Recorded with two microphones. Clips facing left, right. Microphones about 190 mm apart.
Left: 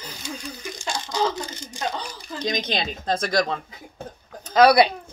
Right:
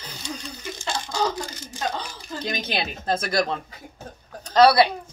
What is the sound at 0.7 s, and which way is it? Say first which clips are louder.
Speech: even; 15° left (ahead or behind).